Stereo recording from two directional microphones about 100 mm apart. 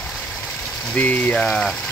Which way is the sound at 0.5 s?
15° left (ahead or behind).